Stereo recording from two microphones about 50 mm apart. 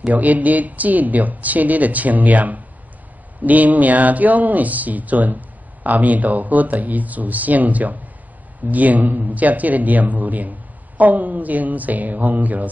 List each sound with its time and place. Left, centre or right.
0.1 s speech: right